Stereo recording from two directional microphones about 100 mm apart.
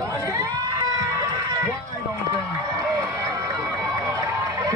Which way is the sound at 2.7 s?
35° right (ahead or behind).